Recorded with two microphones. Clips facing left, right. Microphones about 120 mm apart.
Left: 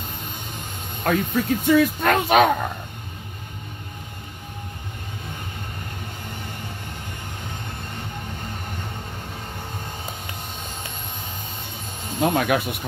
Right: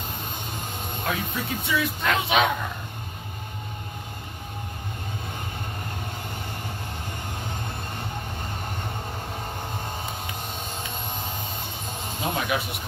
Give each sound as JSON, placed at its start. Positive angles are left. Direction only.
{"t": 1.0, "sound": "speech", "side_deg": 45}
{"t": 12.2, "sound": "speech", "side_deg": 55}